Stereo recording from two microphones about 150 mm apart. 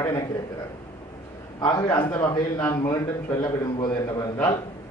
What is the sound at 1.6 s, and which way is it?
Speech, 30° left (ahead or behind).